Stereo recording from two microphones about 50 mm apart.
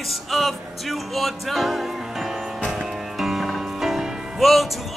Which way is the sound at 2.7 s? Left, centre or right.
Centre.